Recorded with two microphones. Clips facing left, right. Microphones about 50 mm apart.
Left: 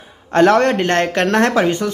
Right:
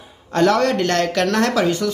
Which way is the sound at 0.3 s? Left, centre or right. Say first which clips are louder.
Left 4 dB; left.